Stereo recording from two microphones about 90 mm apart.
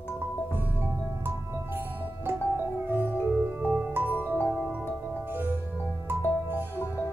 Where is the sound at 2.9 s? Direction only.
20° right (ahead or behind).